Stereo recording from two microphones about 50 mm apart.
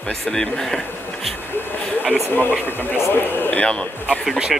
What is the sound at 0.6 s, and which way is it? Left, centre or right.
Speech, centre.